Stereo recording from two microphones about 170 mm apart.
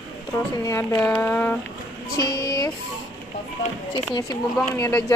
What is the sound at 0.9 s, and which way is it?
Speech, 10° left (ahead or behind).